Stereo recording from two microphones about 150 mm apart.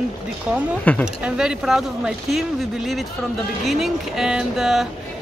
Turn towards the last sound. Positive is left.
turn(degrees=0)  # may be behind; listen again after turning